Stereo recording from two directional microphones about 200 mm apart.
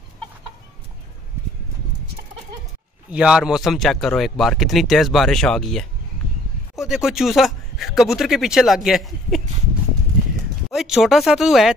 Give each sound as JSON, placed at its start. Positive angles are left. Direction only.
{"t": 3.1, "sound": "speech", "side_deg": -5}
{"t": 10.7, "sound": "speech", "side_deg": 0}